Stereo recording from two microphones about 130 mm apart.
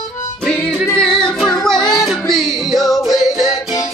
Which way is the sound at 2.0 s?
Centre (ahead or behind).